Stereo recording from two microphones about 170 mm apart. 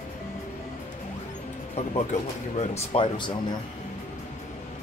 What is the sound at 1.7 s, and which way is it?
Speech, 40° left (ahead or behind).